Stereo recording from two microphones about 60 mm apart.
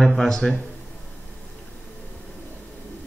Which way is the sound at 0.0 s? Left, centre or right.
Centre.